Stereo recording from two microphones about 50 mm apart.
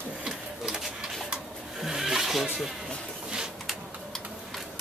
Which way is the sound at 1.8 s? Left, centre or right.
Centre.